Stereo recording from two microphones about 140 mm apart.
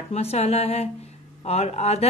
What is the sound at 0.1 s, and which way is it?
A woman's voice, 50° left (ahead or behind).